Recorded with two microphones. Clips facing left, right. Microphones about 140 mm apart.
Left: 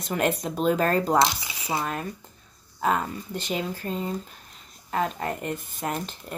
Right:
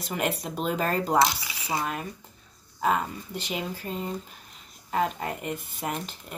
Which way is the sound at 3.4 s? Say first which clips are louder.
Left 3 dB; 5° right (ahead or behind).